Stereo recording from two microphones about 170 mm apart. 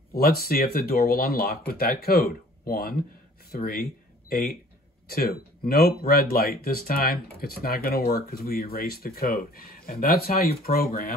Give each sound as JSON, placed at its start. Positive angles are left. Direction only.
{"t": 0.1, "sound": "speech", "side_deg": 60}